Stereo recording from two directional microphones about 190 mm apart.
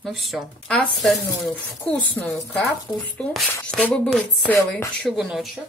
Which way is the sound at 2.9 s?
20° left (ahead or behind).